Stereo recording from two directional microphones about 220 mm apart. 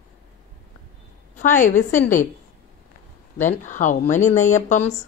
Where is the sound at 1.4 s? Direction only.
35° left (ahead or behind).